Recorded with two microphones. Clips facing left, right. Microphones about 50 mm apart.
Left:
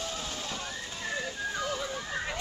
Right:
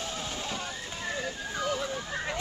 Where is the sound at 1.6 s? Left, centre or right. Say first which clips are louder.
Right 2 dB; centre.